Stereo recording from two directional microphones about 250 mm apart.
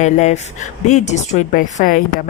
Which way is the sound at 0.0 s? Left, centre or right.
Left.